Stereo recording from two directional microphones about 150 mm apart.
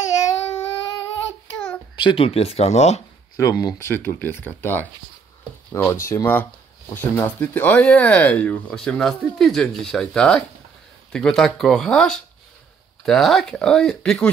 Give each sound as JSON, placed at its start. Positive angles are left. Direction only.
{"t": 0.1, "sound": "a sound", "side_deg": 20}
{"t": 2.0, "sound": "speech", "side_deg": 35}
{"t": 3.3, "sound": "speech", "side_deg": 25}
{"t": 5.9, "sound": "speech", "side_deg": 20}